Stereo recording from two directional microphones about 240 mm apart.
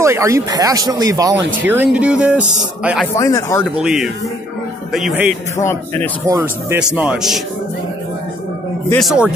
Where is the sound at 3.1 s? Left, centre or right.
Centre.